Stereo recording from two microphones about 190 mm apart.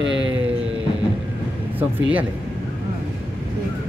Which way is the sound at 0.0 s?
75° right (ahead or behind).